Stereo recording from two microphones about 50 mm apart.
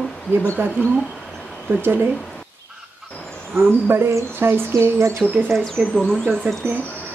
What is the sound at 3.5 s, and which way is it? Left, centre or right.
Speech, right.